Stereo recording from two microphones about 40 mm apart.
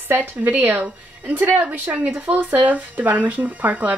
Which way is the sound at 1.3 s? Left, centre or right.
Right.